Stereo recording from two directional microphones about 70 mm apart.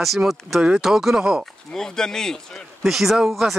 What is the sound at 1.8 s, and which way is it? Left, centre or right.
Speech, centre.